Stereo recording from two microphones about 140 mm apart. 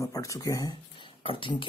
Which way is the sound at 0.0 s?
20° left (ahead or behind).